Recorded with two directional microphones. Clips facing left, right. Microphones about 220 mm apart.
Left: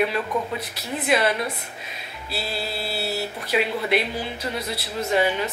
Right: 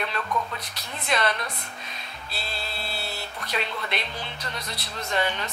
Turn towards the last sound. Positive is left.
turn(degrees=5)  # may be behind; listen again after turning